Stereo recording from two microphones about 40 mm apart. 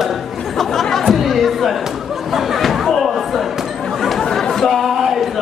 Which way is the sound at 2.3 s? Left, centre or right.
Centre.